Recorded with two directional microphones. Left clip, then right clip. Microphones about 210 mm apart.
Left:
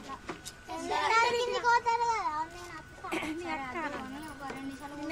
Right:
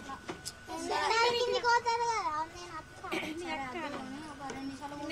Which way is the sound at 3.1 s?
40° left (ahead or behind).